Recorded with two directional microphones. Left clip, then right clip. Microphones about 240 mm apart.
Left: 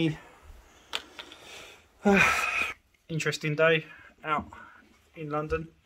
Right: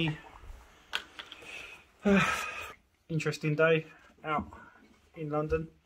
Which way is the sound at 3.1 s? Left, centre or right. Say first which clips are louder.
Left 3 dB; centre.